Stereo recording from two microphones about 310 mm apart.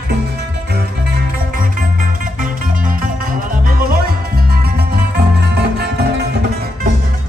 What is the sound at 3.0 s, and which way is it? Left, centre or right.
Music, right.